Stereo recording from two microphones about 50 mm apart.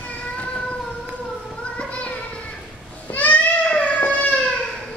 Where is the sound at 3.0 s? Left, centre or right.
Left.